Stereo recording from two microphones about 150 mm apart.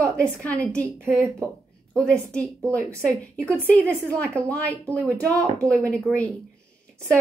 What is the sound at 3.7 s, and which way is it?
A woman's voice, 10° left (ahead or behind).